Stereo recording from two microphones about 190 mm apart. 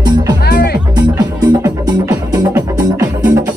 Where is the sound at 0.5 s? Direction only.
55° left (ahead or behind).